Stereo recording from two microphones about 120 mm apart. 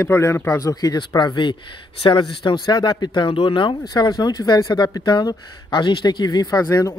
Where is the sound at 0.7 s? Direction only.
30° left (ahead or behind).